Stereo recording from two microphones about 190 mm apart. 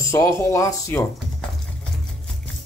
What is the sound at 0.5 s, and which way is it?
Speech, 15° left (ahead or behind).